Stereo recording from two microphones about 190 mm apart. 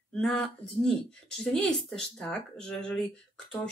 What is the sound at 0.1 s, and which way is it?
A woman's voice, 5° left (ahead or behind).